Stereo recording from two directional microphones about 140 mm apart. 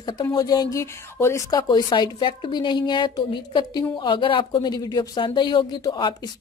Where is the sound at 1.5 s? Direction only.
30° left (ahead or behind).